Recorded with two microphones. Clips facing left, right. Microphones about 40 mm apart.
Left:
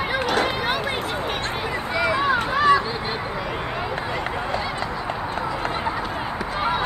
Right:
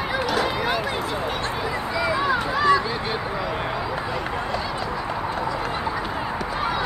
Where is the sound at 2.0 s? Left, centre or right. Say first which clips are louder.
Left 2 dB; left.